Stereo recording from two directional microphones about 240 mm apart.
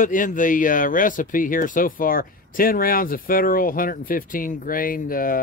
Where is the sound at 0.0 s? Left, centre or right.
Left.